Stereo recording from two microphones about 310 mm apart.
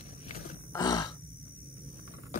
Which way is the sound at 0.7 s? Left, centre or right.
Centre.